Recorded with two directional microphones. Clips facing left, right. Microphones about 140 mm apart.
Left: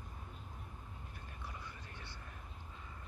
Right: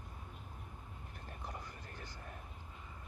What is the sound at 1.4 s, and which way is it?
Vehicle, 45° right (ahead or behind).